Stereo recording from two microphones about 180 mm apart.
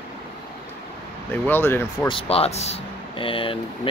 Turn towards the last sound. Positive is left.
turn(degrees=30)  # may be behind; listen again after turning